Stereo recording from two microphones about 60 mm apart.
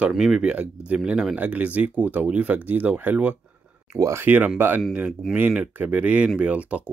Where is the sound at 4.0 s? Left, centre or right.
Right.